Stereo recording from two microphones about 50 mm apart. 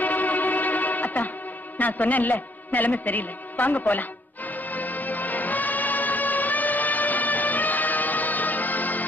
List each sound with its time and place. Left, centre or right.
0.0 s music: left
1.8 s a man's voice: left
4.6 s music: left